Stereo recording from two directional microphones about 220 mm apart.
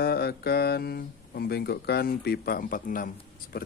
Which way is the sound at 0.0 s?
45° left (ahead or behind).